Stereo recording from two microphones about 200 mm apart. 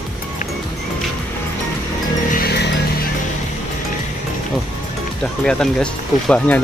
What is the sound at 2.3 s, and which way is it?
Music, 50° left (ahead or behind).